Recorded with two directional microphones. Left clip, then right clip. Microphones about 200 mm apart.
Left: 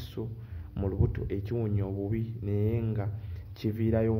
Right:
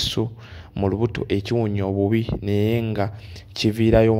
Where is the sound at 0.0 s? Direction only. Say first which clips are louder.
Right 16 dB; 40° right (ahead or behind).